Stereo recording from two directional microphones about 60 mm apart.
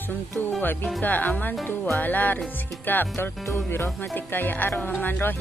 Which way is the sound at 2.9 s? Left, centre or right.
Left.